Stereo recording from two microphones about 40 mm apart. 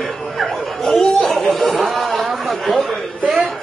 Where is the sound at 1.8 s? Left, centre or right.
Centre.